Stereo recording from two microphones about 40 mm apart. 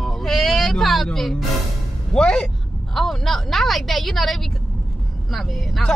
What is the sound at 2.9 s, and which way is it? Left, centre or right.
Speech, centre.